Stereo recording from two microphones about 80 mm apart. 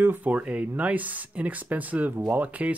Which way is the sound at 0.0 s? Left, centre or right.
Right.